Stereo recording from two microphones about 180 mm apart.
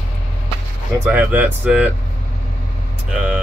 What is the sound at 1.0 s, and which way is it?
Speech, 5° right (ahead or behind).